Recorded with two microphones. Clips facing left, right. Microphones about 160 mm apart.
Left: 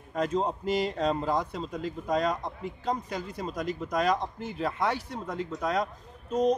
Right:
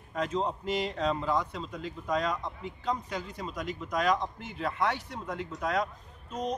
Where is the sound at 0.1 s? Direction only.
40° left (ahead or behind).